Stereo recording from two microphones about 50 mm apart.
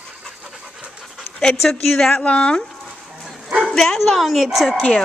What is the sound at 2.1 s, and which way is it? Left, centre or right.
Speech, left.